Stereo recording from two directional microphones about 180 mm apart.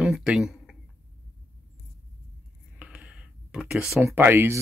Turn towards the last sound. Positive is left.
turn(degrees=-10)  # may be behind; listen again after turning